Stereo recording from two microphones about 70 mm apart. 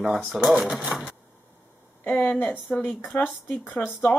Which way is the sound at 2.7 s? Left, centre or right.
Centre.